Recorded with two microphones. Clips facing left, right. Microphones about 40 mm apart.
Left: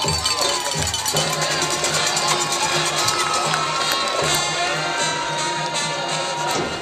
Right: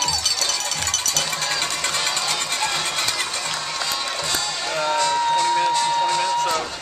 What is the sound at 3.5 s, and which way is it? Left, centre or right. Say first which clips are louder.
Music: left 5 dB; left.